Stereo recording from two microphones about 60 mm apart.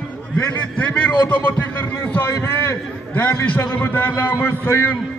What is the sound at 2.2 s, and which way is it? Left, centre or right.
Speech, left.